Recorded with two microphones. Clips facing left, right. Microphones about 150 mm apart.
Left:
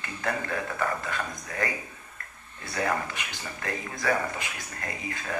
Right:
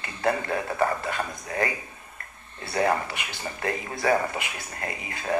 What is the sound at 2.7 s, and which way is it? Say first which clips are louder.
A man's voice: right 4 dB; 30° right (ahead or behind).